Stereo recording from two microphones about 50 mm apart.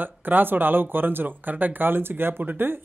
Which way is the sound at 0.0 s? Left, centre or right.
Right.